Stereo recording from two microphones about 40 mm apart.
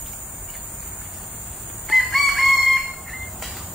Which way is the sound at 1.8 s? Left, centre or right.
Centre.